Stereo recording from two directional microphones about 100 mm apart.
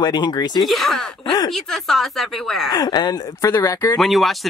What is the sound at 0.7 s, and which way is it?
Speech, centre (ahead or behind).